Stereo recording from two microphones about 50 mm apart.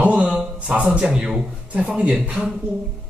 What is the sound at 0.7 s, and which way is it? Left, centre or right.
A man's voice, centre.